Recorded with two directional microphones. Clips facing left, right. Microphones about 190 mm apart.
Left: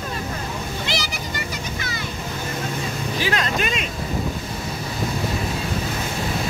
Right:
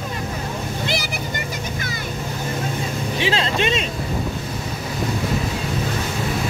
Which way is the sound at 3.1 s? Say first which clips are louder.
Right 2 dB; 25° right (ahead or behind).